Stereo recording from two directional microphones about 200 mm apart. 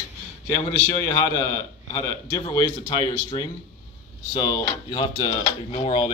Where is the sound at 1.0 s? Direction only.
15° left (ahead or behind).